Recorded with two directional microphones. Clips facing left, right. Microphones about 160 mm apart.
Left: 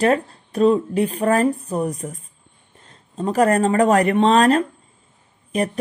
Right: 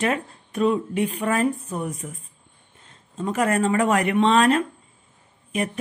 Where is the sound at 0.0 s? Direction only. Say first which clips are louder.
Left 6 dB; 35° left (ahead or behind).